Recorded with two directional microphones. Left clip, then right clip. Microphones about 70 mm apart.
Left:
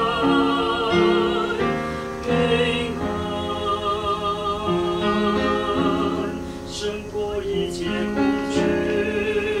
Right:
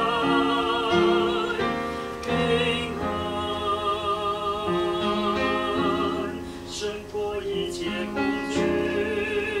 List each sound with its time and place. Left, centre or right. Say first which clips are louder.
0.0 s music: left 3 dB; centre
4.7 s music: left 3 dB; right
5.8 s music: left 3 dB; centre
8.2 s music: left 3 dB; centre